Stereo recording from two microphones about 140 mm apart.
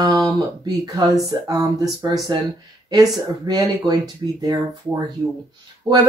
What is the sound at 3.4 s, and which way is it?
Speech, 30° right (ahead or behind).